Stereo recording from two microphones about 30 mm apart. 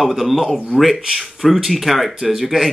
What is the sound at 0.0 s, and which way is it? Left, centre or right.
Speech, centre.